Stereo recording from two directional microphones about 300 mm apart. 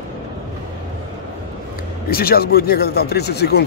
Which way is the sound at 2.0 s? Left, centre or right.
Left.